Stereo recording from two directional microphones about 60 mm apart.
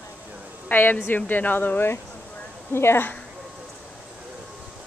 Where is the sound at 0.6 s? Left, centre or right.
Left.